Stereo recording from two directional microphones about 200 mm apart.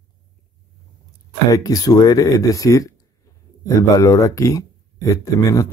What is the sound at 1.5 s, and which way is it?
Speech, 15° left (ahead or behind).